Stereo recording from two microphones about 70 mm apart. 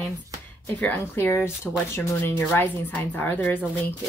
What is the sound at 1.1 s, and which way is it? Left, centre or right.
A woman's voice, left.